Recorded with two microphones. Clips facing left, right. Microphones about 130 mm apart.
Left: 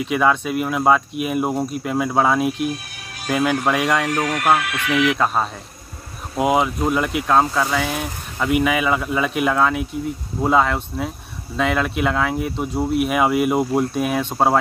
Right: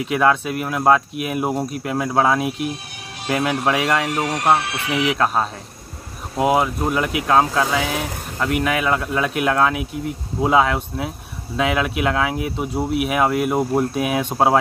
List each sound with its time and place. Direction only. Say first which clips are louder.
0.0 s speech: right 1 dB; centre (ahead or behind)
4.1 s speech: even; 25° right (ahead or behind)
5.1 s speech: even; centre (ahead or behind)